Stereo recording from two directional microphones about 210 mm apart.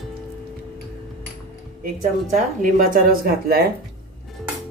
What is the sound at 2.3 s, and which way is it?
Speech, 40° right (ahead or behind).